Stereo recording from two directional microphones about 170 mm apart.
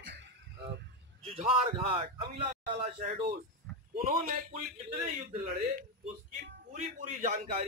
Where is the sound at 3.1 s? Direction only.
65° right (ahead or behind).